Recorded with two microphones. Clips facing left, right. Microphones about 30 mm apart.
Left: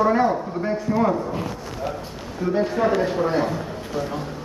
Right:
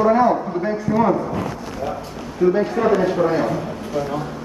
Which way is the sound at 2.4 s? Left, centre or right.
Centre.